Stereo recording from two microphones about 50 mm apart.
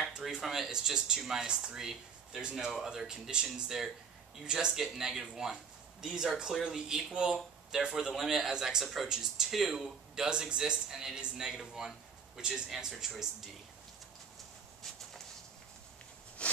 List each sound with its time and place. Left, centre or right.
0.3 s speech: centre
12.6 s speech: centre
16.4 s a sound: left